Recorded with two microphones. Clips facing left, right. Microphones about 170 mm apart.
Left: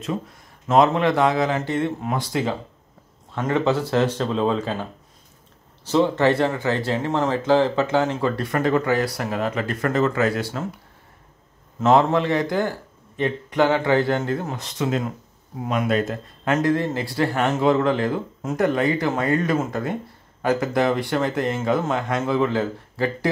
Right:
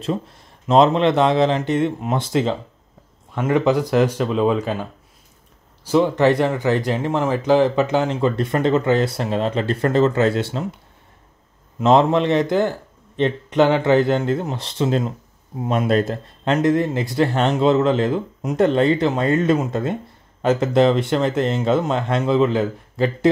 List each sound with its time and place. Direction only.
0.7 s speech: 20° right (ahead or behind)
5.9 s speech: 15° right (ahead or behind)
11.8 s speech: 20° right (ahead or behind)
16.5 s speech: 20° right (ahead or behind)